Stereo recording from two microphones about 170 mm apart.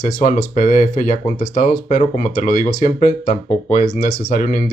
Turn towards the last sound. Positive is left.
turn(degrees=50)  # may be behind; listen again after turning